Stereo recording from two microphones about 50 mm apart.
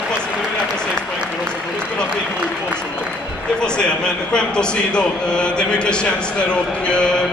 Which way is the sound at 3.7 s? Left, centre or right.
Centre.